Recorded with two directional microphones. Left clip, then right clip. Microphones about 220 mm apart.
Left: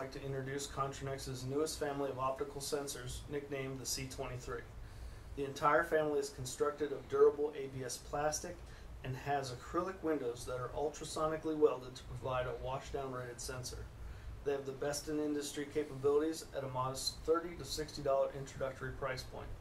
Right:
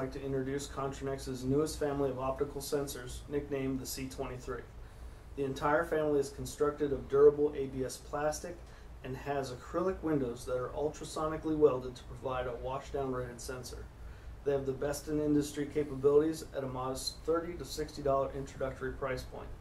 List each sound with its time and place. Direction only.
0.0 s speech: centre (ahead or behind)